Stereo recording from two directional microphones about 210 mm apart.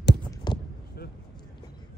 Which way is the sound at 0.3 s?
20° left (ahead or behind).